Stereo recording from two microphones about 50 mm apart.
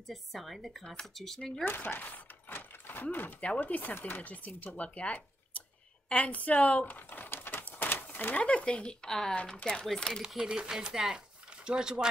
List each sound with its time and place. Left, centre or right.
0.1 s speech: centre
0.8 s speech: centre
1.6 s speech: left
3.3 s speech: left
3.6 s a woman's voice: left
7.1 s a sound: left
8.4 s speech: left
9.0 s speech: centre
10.2 s speech: centre